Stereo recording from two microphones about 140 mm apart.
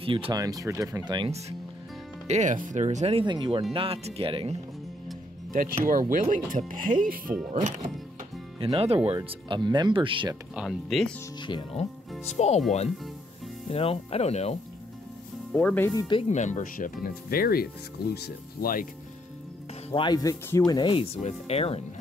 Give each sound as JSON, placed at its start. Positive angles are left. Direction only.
{"t": 0.0, "sound": "speech", "side_deg": -40}
{"t": 0.3, "sound": "speech", "side_deg": -25}
{"t": 2.2, "sound": "speech", "side_deg": -60}
{"t": 5.5, "sound": "speech", "side_deg": -75}
{"t": 8.7, "sound": "speech", "side_deg": -45}
{"t": 10.5, "sound": "speech", "side_deg": -5}
{"t": 11.4, "sound": "speech", "side_deg": 35}
{"t": 12.3, "sound": "speech", "side_deg": 50}
{"t": 13.7, "sound": "speech", "side_deg": 45}
{"t": 15.5, "sound": "speech", "side_deg": 10}
{"t": 15.9, "sound": "speech", "side_deg": 25}
{"t": 16.3, "sound": "speech", "side_deg": 60}
{"t": 19.9, "sound": "speech", "side_deg": 30}
{"t": 20.9, "sound": "speech", "side_deg": 45}